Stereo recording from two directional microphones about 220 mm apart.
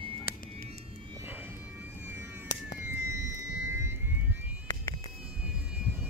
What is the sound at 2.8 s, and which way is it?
Vehicle, 10° right (ahead or behind).